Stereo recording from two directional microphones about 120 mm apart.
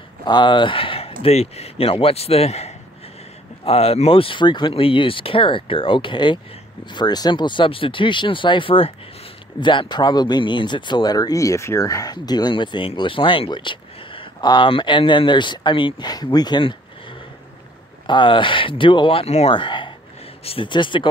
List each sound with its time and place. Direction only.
0.2 s speech: 40° left (ahead or behind)
18.0 s speech: 40° left (ahead or behind); by 19.5 s 60° left (ahead or behind)
19.5 s speech: 45° left (ahead or behind)